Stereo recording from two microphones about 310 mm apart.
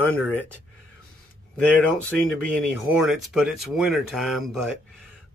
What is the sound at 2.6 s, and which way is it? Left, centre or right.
Speech, right.